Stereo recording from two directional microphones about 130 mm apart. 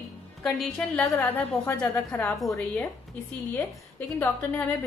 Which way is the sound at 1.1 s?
20° left (ahead or behind).